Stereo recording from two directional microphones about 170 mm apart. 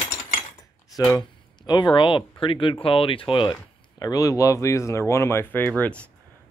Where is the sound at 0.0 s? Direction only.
45° left (ahead or behind).